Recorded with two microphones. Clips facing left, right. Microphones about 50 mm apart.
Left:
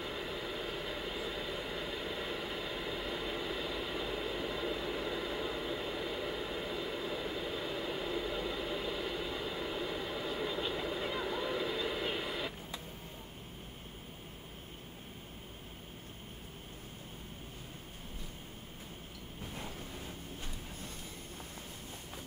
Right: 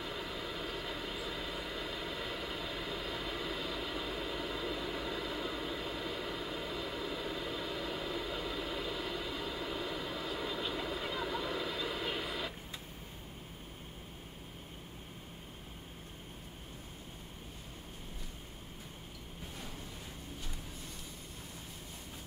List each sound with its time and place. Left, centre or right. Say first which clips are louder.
0.0 s vehicle: left 1 dB; centre